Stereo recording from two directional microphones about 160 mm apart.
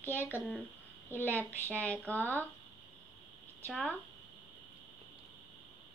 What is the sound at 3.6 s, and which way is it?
Speech, 5° left (ahead or behind).